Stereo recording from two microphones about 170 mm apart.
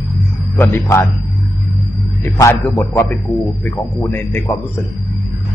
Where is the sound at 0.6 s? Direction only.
15° left (ahead or behind).